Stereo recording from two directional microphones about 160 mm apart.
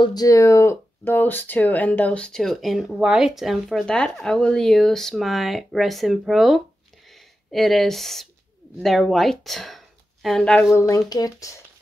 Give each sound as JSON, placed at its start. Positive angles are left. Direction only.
{"t": 0.0, "sound": "a woman's voice", "side_deg": 25}
{"t": 10.7, "sound": "speech", "side_deg": 20}